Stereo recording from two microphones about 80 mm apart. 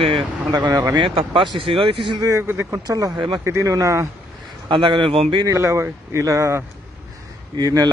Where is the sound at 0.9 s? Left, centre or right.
Right.